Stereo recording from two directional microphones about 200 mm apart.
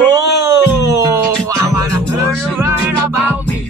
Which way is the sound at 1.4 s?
15° right (ahead or behind).